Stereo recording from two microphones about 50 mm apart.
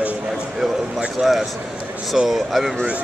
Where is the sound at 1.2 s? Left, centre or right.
Centre.